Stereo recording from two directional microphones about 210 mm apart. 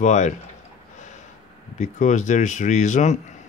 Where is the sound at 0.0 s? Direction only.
35° left (ahead or behind).